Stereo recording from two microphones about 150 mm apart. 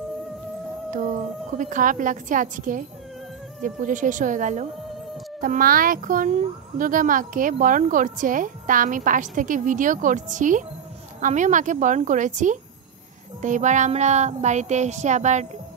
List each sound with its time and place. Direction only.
1.6 s speech: 60° right (ahead or behind)
5.4 s speech: 70° right (ahead or behind)
13.4 s child singing: 55° right (ahead or behind)